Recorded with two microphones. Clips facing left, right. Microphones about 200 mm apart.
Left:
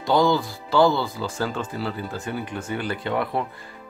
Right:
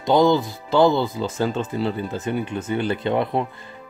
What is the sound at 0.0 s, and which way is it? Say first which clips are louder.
Speech: right 3 dB; 20° right (ahead or behind).